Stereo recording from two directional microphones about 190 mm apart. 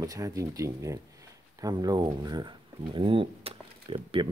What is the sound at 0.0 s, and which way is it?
Speech, 20° right (ahead or behind).